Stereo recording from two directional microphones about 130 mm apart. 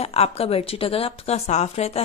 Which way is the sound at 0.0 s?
50° left (ahead or behind).